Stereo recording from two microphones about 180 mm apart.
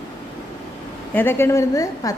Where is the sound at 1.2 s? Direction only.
15° left (ahead or behind).